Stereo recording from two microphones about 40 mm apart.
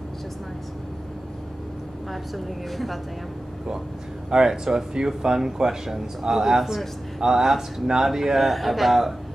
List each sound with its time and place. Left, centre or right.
2.3 s speech: centre
4.3 s speech: centre